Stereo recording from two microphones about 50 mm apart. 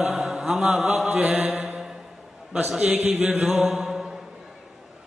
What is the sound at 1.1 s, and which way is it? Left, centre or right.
Speech, right.